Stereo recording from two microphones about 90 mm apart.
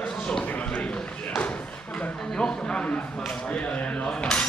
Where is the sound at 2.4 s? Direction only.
10° left (ahead or behind).